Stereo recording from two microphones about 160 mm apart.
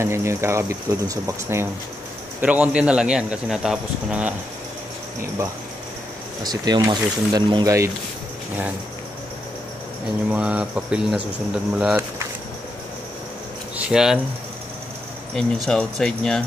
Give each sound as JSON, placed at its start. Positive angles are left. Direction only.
{"t": 0.0, "sound": "speech", "side_deg": -15}
{"t": 6.4, "sound": "speech", "side_deg": -25}
{"t": 10.3, "sound": "speech", "side_deg": -5}
{"t": 13.7, "sound": "speech", "side_deg": -5}
{"t": 15.3, "sound": "speech", "side_deg": 5}